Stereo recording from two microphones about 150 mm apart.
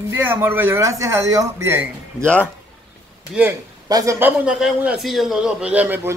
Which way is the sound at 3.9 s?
25° right (ahead or behind).